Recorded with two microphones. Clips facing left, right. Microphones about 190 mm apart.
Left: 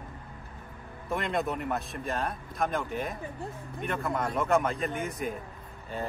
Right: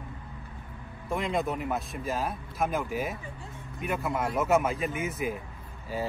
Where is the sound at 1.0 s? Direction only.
Centre (ahead or behind).